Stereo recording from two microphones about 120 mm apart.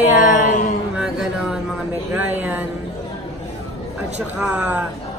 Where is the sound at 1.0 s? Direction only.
5° right (ahead or behind).